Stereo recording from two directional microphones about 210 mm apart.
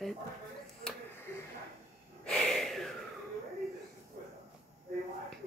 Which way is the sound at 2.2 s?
Centre (ahead or behind).